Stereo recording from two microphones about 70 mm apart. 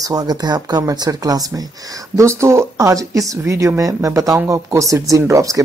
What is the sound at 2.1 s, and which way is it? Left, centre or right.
Speech, right.